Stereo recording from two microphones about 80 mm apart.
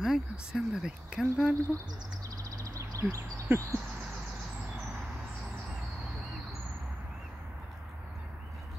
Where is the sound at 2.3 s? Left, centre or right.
Right.